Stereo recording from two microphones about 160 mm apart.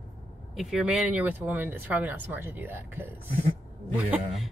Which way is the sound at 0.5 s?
Centre (ahead or behind).